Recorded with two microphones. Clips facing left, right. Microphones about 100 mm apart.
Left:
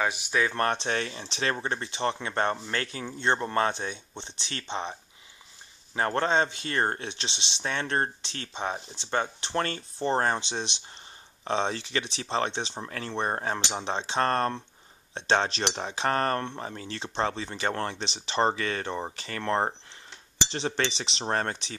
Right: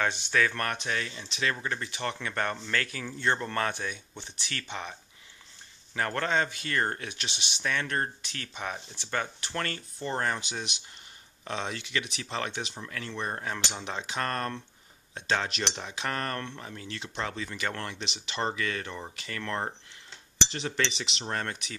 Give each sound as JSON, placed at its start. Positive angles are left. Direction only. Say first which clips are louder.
{"t": 0.0, "sound": "speech", "louder": "left 1 dB", "side_deg": 10}
{"t": 0.4, "sound": "speech", "louder": "left 3 dB", "side_deg": 25}
{"t": 5.9, "sound": "speech", "louder": "left 3 dB", "side_deg": 25}